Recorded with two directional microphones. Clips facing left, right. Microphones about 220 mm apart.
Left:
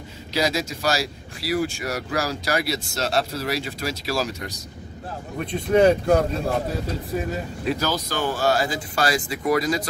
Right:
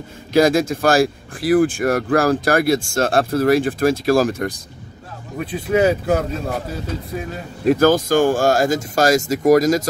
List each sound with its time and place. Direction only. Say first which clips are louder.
0.3 s speech: right 10 dB; 50° right (ahead or behind)
5.4 s speech: even; 5° right (ahead or behind)
7.6 s speech: right 12 dB; 50° right (ahead or behind)